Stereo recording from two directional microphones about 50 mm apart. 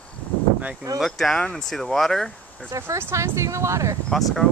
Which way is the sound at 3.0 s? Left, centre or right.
Right.